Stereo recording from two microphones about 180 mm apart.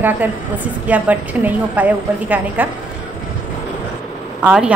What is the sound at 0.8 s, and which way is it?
A woman's voice, 10° right (ahead or behind).